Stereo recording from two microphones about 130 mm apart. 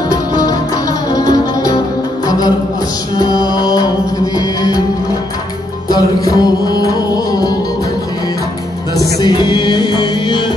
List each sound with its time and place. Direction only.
1.3 s music: 30° left (ahead or behind)
3.2 s mantra: 30° left (ahead or behind)
4.4 s music: 30° left (ahead or behind)
5.9 s music: 30° left (ahead or behind)
9.2 s music: 35° left (ahead or behind)